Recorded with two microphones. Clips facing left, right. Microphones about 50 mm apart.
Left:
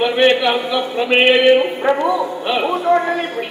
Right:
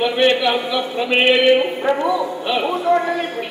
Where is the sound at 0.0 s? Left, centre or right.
Centre.